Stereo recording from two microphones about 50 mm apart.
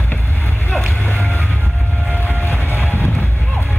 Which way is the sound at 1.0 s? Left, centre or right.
Left.